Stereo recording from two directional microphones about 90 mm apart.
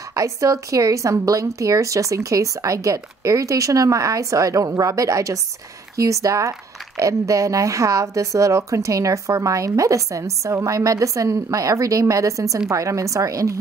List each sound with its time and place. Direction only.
0.1 s a woman's voice: 35° right (ahead or behind)